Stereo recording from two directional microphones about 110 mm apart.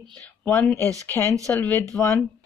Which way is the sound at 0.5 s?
20° left (ahead or behind).